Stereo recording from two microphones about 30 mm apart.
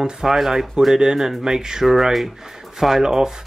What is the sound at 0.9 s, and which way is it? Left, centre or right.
Speech, right.